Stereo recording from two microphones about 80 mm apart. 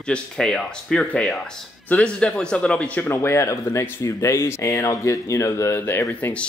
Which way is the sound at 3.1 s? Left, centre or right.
Left.